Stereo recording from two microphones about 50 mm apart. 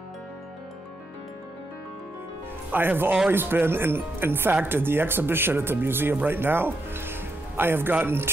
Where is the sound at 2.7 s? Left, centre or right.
Right.